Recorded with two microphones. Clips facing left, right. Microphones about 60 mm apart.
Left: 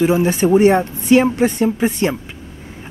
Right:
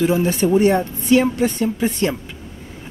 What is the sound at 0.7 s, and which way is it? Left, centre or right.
Speech, left.